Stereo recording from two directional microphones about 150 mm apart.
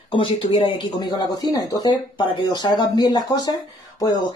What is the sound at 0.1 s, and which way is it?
Speech, 35° left (ahead or behind).